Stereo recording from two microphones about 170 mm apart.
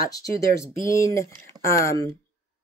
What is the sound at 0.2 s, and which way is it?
Speech, 20° left (ahead or behind).